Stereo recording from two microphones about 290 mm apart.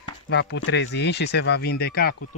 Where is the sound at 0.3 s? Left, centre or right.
Left.